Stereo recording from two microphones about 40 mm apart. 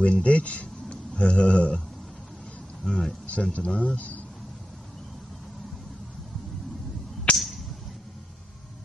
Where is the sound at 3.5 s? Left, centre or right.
Left.